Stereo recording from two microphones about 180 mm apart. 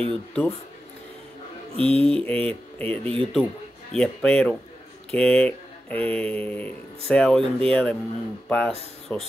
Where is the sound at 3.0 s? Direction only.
30° right (ahead or behind).